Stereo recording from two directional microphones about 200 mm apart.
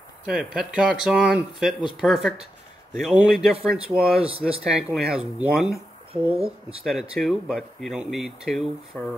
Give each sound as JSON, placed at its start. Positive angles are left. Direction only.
{"t": 0.3, "sound": "speech", "side_deg": -5}
{"t": 6.3, "sound": "speech", "side_deg": -30}
{"t": 6.8, "sound": "speech", "side_deg": 0}